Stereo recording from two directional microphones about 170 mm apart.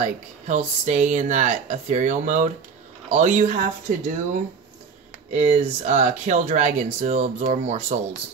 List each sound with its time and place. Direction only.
0.0 s speech: 45° right (ahead or behind)